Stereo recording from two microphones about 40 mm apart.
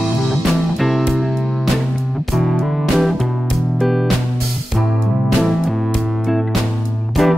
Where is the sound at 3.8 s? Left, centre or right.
Centre.